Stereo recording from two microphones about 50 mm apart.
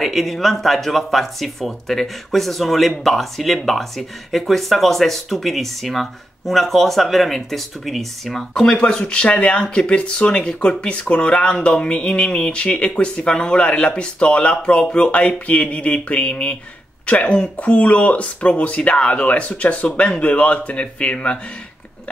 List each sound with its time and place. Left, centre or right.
0.0 s speech: centre; by 21.4 s left